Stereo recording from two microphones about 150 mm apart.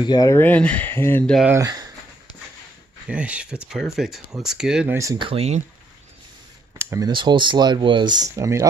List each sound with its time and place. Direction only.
0.0 s speech: 25° left (ahead or behind)
0.4 s speech: 10° left (ahead or behind)
1.5 s speech: 25° right (ahead or behind)
3.1 s speech: 10° right (ahead or behind)
4.9 s speech: 20° right (ahead or behind)
5.2 s speech: 40° right (ahead or behind)
7.1 s speech: 30° right (ahead or behind)